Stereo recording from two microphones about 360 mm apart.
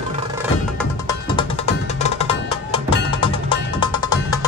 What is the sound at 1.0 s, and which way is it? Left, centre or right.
Music, centre.